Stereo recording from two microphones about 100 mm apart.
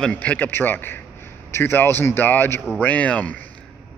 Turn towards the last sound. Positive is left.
turn(degrees=15)  # may be behind; listen again after turning